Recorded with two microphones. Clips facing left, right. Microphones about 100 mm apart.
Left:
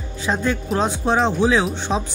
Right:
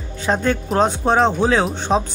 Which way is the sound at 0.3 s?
55° right (ahead or behind).